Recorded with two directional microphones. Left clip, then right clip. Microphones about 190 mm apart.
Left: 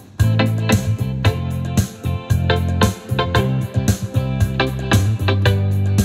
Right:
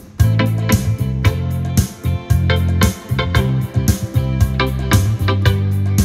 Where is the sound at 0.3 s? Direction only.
35° right (ahead or behind).